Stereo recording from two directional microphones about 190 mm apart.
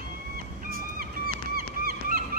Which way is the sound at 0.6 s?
50° right (ahead or behind).